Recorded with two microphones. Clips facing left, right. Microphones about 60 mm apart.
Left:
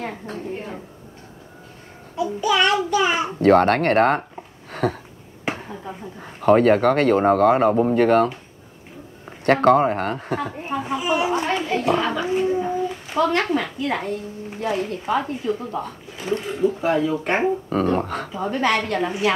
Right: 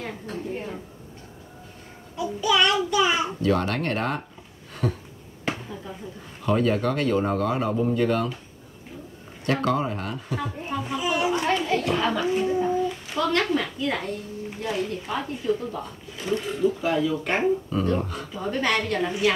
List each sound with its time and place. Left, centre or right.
0.0 s a woman's voice: left
2.1 s a child's voice: left
3.4 s speech: left
4.7 s a sound: left
5.5 s a sound: left
5.9 s a child's voice: left
6.4 s speech: left
9.5 s speech: left
10.6 s a child's voice: left
17.9 s speech: left
18.3 s a child's voice: left